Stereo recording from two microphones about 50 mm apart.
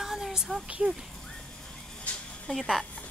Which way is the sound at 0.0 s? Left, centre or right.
Centre.